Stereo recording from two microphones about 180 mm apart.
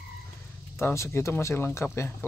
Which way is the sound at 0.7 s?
15° left (ahead or behind).